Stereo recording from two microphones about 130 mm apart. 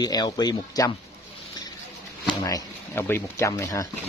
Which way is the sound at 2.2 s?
25° left (ahead or behind).